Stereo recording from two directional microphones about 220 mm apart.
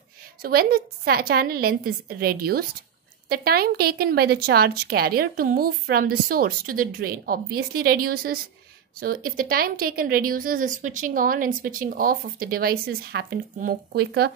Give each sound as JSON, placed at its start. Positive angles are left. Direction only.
{"t": 0.4, "sound": "a woman's voice", "side_deg": -45}